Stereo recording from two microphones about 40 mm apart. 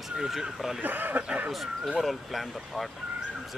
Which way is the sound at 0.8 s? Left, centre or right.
Right.